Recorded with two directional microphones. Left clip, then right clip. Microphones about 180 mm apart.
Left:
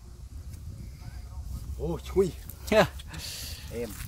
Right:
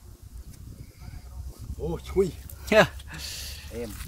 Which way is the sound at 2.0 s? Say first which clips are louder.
Right 1 dB; 5° left (ahead or behind).